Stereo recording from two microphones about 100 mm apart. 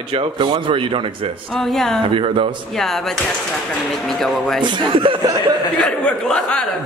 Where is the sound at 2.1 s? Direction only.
65° right (ahead or behind).